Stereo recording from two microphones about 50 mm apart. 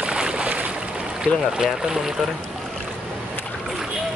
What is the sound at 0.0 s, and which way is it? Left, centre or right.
Boat, centre.